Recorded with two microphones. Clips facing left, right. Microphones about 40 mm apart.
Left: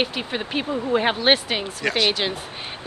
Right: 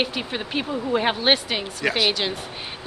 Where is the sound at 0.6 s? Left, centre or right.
Left.